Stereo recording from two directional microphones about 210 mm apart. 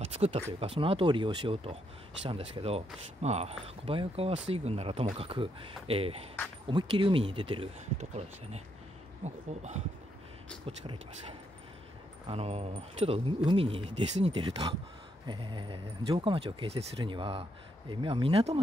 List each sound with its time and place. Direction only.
0.0 s a sound: 30° right (ahead or behind)
0.6 s speech: 25° right (ahead or behind)
12.3 s speech: 30° right (ahead or behind)